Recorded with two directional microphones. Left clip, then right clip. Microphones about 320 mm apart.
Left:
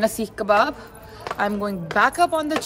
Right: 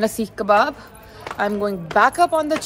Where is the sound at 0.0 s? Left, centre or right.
Centre.